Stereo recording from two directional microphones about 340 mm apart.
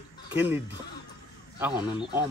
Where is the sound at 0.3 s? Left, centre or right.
Centre.